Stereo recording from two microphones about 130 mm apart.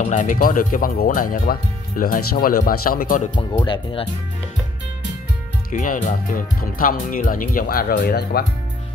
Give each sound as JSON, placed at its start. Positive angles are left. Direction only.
{"t": 0.0, "sound": "speech", "side_deg": 75}
{"t": 3.6, "sound": "speech", "side_deg": 40}
{"t": 5.7, "sound": "speech", "side_deg": 90}